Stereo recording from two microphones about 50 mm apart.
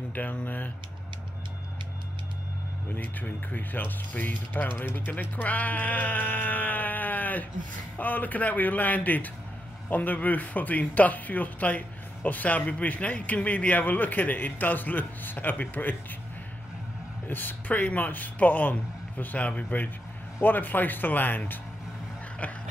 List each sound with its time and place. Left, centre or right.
0.1 s speech: left
3.0 s speech: left
5.1 s speech: left
17.3 s speech: left
22.4 s dog: left